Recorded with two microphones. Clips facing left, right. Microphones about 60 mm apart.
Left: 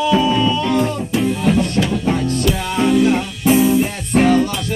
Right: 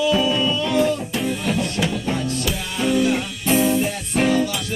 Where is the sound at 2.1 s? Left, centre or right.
Left.